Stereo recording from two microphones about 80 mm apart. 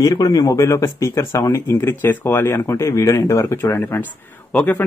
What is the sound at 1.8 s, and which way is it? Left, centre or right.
Speech, left.